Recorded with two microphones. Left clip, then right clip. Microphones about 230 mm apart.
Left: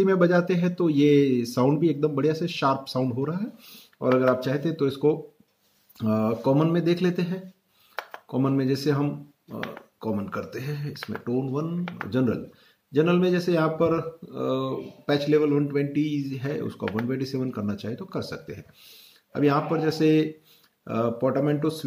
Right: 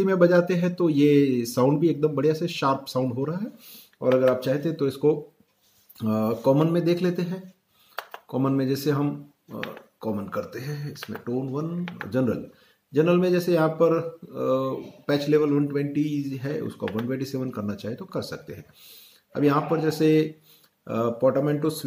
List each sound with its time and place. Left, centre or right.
0.0 s speech: centre